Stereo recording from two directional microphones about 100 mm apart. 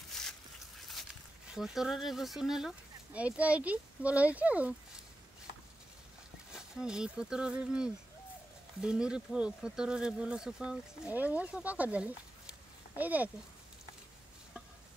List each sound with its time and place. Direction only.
0.1 s a sound: 5° left (ahead or behind)
1.5 s speech: 5° right (ahead or behind)
6.5 s speech: 5° right (ahead or behind)